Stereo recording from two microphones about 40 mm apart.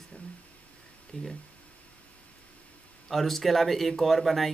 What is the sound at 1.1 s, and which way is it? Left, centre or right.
Speech, left.